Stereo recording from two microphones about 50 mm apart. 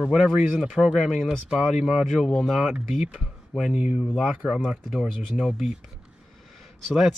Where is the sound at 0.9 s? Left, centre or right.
Centre.